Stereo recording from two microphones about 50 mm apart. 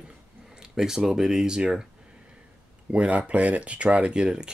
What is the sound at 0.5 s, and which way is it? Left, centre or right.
Speech, centre.